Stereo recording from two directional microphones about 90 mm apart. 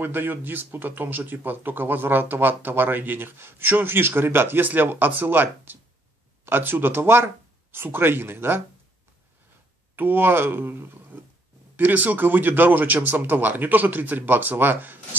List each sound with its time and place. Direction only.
0.0 s speech: 20° right (ahead or behind)
9.9 s speech: 20° right (ahead or behind)